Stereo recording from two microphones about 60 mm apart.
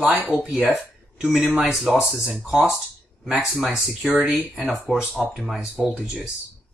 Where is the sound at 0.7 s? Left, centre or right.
Centre.